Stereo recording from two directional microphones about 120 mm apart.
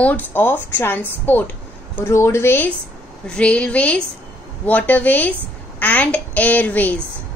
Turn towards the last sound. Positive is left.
turn(degrees=15)  # may be behind; listen again after turning